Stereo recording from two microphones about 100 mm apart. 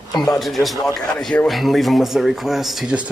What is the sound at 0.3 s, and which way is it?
Speech, centre (ahead or behind).